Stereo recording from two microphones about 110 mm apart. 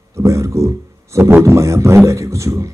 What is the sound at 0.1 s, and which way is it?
A man's voice, 25° right (ahead or behind).